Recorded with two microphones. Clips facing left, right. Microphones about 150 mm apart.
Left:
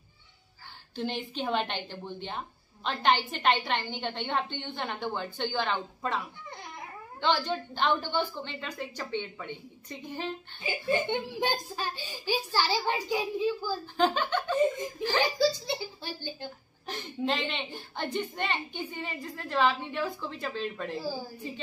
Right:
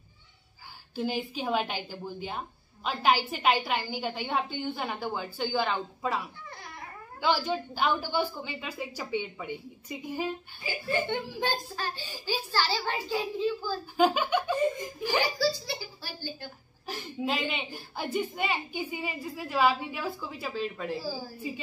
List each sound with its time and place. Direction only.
0.9 s a woman's voice: 5° right (ahead or behind)
10.6 s a child's voice: 20° left (ahead or behind)
13.9 s a woman's voice: 10° right (ahead or behind)
15.3 s speech: 20° left (ahead or behind)
16.8 s a woman's voice: 5° right (ahead or behind)